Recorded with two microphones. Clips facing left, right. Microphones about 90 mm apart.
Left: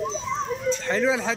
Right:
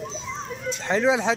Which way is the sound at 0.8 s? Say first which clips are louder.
Right 6 dB; 20° right (ahead or behind).